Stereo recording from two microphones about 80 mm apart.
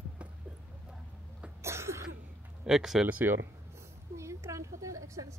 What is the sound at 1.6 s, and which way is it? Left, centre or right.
Cough, right.